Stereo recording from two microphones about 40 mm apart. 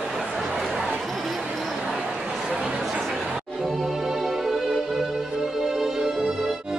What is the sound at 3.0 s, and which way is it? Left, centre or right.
Music, centre.